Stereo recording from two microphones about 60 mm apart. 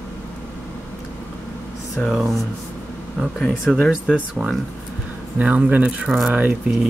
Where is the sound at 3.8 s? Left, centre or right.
Centre.